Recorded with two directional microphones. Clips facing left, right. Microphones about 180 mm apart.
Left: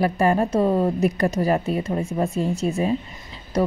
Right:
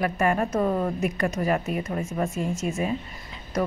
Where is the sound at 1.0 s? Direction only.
35° left (ahead or behind).